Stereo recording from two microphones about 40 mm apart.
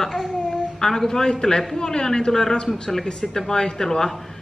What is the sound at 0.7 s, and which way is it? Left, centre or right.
Speech, centre.